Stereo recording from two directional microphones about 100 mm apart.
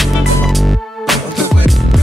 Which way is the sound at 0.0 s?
Centre (ahead or behind).